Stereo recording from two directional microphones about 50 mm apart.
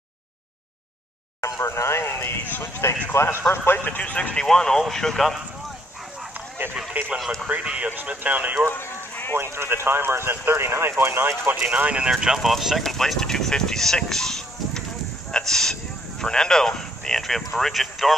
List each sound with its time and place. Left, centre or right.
1.4 s speech: left
3.7 s speech: left
4.5 s speech: centre
6.9 s speech: right
9.4 s speech: right
11.6 s speech: right
12.1 s speech: centre